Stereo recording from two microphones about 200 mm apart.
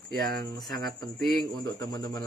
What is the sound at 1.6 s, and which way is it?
Speech, 20° left (ahead or behind).